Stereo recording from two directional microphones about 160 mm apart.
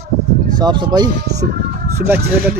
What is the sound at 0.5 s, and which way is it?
Speech, 30° right (ahead or behind).